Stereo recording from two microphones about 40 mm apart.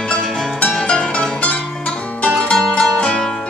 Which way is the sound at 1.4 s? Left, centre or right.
Left.